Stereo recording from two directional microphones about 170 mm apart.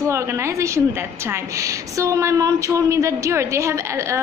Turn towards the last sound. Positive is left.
turn(degrees=-15)  # may be behind; listen again after turning